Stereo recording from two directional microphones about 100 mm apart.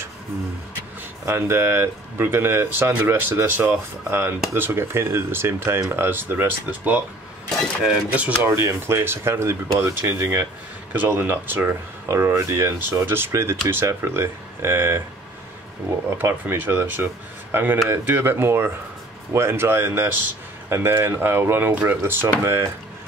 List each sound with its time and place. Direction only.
1.2 s speech: 25° right (ahead or behind)
8.4 s speech: 25° right (ahead or behind)
16.1 s speech: 25° right (ahead or behind)